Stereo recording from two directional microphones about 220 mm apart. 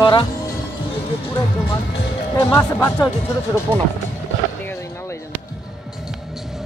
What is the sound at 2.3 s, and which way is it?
Speech, 10° left (ahead or behind).